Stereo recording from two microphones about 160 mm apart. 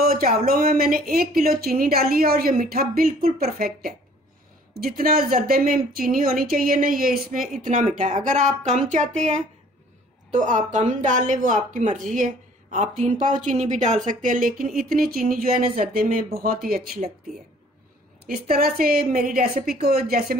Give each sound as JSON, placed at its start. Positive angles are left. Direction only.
{"t": 0.0, "sound": "a sound", "side_deg": -65}
{"t": 0.4, "sound": "a woman's voice", "side_deg": -65}
{"t": 10.3, "sound": "a woman's voice", "side_deg": -50}
{"t": 18.5, "sound": "a woman's voice", "side_deg": -65}